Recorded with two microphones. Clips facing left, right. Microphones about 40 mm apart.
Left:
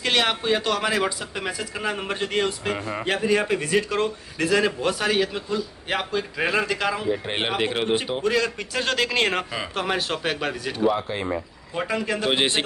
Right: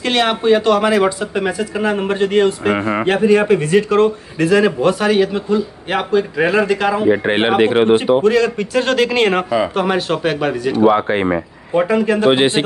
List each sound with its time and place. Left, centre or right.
0.0 s speech: centre; by 7.9 s right
8.2 s speech: centre
10.8 s speech: right
11.9 s speech: right